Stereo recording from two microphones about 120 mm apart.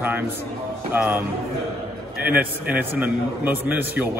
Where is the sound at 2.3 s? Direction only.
15° right (ahead or behind).